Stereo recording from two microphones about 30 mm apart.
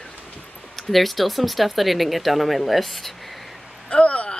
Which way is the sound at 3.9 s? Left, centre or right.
Left.